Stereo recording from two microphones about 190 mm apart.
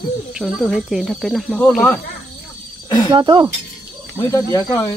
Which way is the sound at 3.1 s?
25° right (ahead or behind).